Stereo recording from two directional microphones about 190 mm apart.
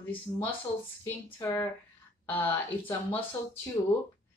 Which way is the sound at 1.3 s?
15° left (ahead or behind).